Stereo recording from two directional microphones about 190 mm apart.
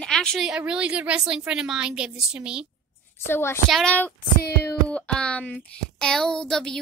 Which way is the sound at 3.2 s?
15° left (ahead or behind).